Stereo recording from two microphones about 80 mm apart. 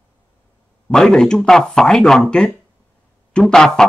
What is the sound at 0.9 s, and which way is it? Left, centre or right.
Speech, centre.